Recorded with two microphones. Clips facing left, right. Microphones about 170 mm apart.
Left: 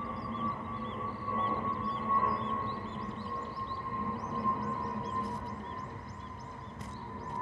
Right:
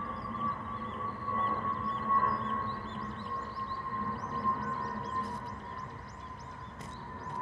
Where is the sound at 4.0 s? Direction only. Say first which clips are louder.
Left 2 dB; 15° left (ahead or behind).